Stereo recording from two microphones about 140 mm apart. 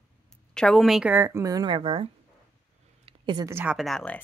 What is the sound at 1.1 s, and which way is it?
A woman's voice, 20° right (ahead or behind).